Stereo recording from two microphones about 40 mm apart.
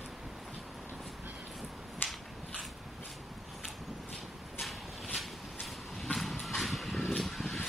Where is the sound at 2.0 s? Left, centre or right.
Left.